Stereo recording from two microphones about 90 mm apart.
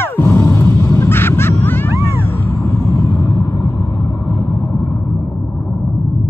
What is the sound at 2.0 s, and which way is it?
Cat, 25° left (ahead or behind).